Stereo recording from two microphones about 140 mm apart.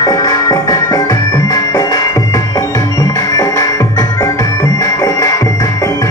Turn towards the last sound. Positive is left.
turn(degrees=25)  # may be behind; listen again after turning